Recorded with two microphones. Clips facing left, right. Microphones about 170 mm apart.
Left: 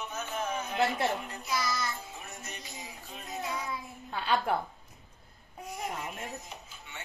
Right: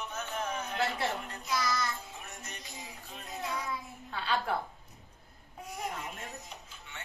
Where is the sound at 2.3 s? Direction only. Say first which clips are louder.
Left 2 dB; 5° left (ahead or behind).